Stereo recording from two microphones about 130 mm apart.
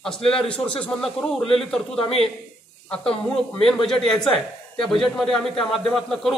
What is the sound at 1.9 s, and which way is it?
Speech, 45° left (ahead or behind).